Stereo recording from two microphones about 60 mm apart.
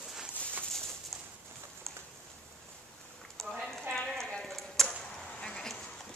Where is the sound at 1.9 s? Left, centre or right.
Centre.